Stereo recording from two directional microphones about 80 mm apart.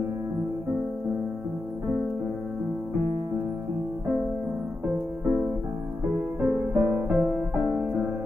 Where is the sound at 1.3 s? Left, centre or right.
Right.